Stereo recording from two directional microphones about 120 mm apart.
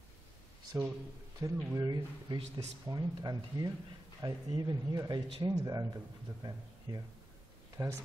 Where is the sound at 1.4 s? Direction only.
25° right (ahead or behind).